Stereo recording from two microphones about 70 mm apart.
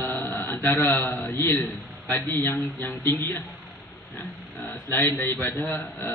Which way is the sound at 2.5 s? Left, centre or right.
Left.